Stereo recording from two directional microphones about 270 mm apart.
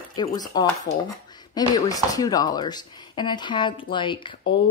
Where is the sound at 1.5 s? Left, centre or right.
Centre.